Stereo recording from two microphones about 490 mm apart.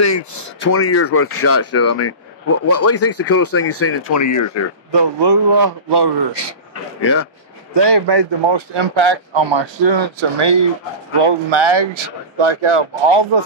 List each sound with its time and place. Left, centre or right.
0.0 s speech: left
4.9 s speech: right
7.0 s speech: left
7.7 s speech: right